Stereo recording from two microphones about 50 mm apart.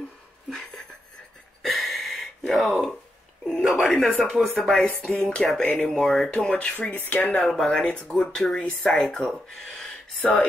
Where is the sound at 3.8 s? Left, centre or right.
Centre.